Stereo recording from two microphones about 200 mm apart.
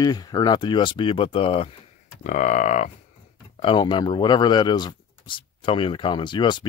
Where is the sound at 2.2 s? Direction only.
40° left (ahead or behind).